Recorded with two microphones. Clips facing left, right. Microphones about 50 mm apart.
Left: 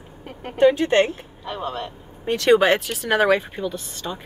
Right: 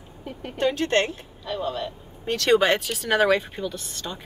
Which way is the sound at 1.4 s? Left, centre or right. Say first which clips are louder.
Right 1 dB; left.